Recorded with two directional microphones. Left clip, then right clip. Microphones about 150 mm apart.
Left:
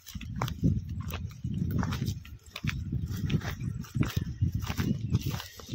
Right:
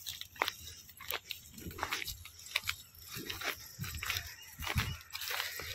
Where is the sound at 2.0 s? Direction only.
5° left (ahead or behind).